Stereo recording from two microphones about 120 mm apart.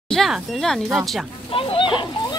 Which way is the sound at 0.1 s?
Centre (ahead or behind).